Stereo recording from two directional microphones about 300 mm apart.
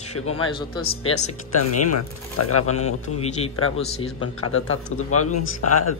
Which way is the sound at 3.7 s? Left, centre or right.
Centre.